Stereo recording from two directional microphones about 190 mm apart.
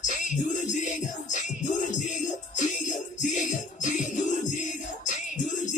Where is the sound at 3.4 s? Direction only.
40° left (ahead or behind).